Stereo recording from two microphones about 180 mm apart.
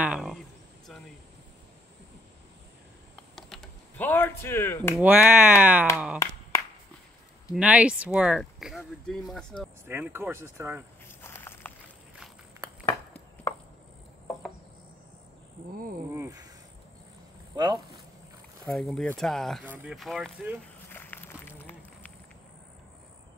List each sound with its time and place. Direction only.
0.0 s speech: 5° right (ahead or behind)
3.3 s a sound: centre (ahead or behind)
4.9 s speech: 10° right (ahead or behind)
6.2 s clapping: 15° left (ahead or behind)
7.5 s speech: 5° right (ahead or behind)
9.8 s speech: 15° right (ahead or behind)
11.1 s walk: 15° left (ahead or behind)
12.8 s a sound: 10° left (ahead or behind)
16.2 s a sound: 20° right (ahead or behind)
17.6 s speech: 25° right (ahead or behind)
18.7 s speech: centre (ahead or behind)
19.6 s speech: 10° right (ahead or behind)
20.9 s walk: 10° left (ahead or behind)